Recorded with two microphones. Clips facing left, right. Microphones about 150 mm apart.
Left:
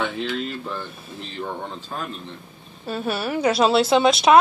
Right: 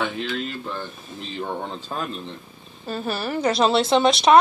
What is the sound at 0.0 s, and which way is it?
Speech, centre (ahead or behind).